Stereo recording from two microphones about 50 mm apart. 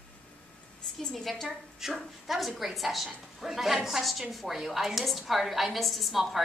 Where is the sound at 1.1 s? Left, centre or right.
Centre.